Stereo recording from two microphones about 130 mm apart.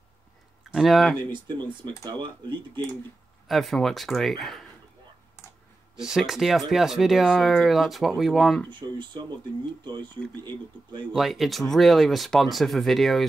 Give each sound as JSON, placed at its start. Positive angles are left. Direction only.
{"t": 0.7, "sound": "speech", "side_deg": -5}
{"t": 2.0, "sound": "speech", "side_deg": -35}
{"t": 3.4, "sound": "speech", "side_deg": 0}
{"t": 5.9, "sound": "speech", "side_deg": -5}
{"t": 8.6, "sound": "speech", "side_deg": -35}
{"t": 11.1, "sound": "speech", "side_deg": 0}